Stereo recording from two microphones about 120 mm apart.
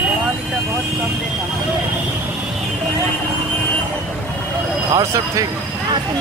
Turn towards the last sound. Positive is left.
turn(degrees=-30)  # may be behind; listen again after turning